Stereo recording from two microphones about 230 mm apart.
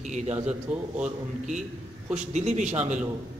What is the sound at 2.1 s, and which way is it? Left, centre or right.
Speech, right.